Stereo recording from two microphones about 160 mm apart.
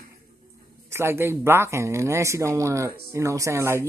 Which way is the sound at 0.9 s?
15° right (ahead or behind).